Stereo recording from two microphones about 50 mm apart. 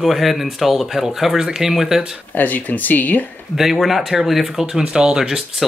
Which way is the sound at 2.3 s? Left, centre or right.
Left.